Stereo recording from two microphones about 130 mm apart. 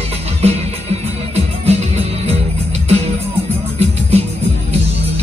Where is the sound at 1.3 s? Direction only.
50° right (ahead or behind).